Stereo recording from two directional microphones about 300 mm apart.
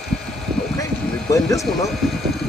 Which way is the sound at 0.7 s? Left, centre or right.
Centre.